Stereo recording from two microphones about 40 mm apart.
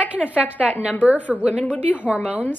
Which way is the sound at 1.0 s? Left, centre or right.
Right.